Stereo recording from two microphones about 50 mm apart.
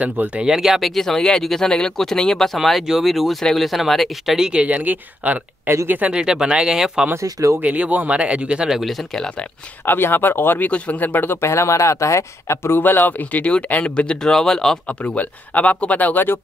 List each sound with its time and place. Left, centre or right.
0.0 s speech: right
0.4 s speech: centre
4.4 s speech: right
6.1 s speech: centre
7.2 s speech: right
7.6 s speech: right
8.8 s speech: centre
9.8 s speech: left
10.7 s speech: left
11.4 s speech: left
12.8 s speech: left; by 14.8 s centre
14.9 s speech: left